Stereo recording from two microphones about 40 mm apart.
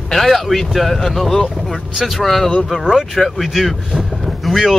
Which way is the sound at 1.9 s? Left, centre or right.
Centre.